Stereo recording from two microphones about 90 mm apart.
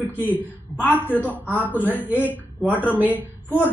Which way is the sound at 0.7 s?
20° left (ahead or behind).